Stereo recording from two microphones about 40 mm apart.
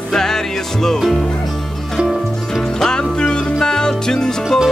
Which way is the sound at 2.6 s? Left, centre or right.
Centre.